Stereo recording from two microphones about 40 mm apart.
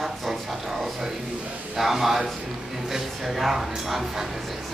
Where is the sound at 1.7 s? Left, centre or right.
Centre.